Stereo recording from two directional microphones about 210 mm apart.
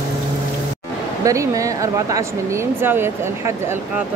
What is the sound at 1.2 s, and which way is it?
Speech, 15° right (ahead or behind).